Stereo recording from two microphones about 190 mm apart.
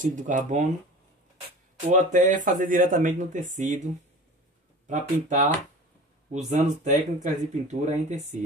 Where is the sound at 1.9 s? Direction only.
40° right (ahead or behind).